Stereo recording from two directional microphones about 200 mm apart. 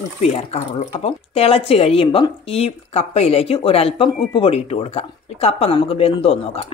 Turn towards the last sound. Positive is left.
turn(degrees=30)  # may be behind; listen again after turning